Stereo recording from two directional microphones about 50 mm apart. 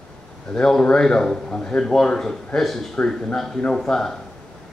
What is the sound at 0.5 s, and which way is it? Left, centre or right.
A man's voice, centre.